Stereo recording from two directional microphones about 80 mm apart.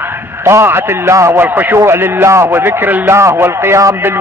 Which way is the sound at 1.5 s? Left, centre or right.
Right.